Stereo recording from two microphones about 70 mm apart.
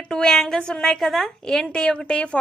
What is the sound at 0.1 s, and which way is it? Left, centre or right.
A woman's voice, centre.